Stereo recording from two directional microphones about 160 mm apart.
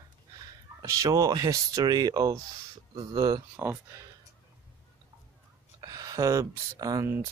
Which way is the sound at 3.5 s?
10° right (ahead or behind).